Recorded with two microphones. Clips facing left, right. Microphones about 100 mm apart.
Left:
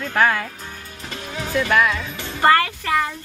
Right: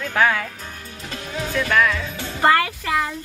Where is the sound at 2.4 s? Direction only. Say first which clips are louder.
Left 1 dB; 15° right (ahead or behind).